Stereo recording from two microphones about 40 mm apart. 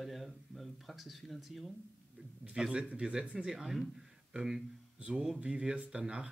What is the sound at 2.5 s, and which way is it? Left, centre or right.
Speech, centre.